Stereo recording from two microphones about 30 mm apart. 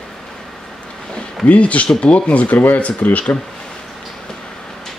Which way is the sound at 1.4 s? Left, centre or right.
Left.